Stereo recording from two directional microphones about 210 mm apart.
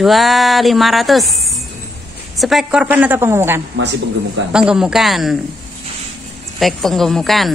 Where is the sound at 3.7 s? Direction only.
55° right (ahead or behind).